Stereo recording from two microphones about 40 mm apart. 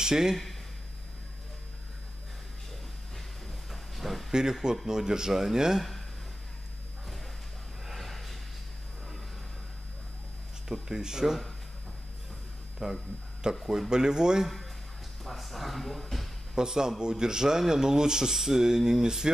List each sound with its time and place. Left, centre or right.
0.0 s speech: centre
3.7 s a sound: centre
4.3 s speech: centre
7.8 s a sound: centre
10.7 s speech: centre
12.7 s speech: centre
15.2 s speech: centre
16.5 s speech: centre